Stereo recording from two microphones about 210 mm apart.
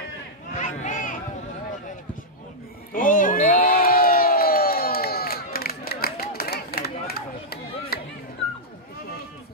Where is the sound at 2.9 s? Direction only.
40° left (ahead or behind).